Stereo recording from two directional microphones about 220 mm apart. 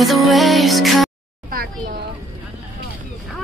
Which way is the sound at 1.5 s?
45° right (ahead or behind).